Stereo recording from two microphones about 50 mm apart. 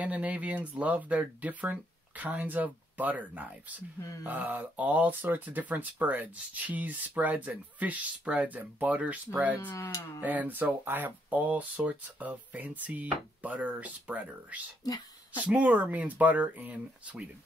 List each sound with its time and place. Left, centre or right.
0.0 s speech: right
9.6 s speech: left
10.2 s speech: right